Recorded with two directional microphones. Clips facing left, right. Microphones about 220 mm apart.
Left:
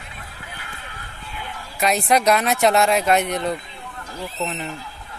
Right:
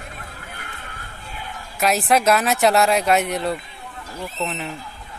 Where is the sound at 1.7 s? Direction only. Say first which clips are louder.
Even; centre (ahead or behind).